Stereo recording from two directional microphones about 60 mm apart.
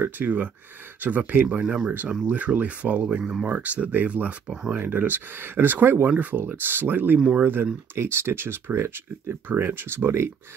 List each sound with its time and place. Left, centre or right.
0.0 s speech: right